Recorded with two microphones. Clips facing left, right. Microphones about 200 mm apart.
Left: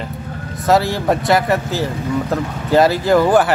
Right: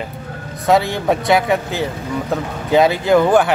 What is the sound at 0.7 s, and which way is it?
Speech, centre (ahead or behind).